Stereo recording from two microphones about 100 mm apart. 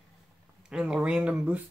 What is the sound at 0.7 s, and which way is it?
Speech, 10° right (ahead or behind).